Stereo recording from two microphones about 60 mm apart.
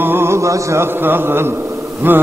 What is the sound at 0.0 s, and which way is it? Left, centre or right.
Mantra, right.